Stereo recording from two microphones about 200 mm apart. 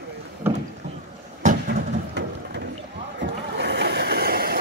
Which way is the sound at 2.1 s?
60° right (ahead or behind).